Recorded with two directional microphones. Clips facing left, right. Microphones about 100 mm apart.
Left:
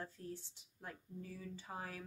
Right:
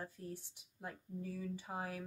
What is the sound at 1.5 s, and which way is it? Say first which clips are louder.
Speech: right 4 dB; 15° right (ahead or behind).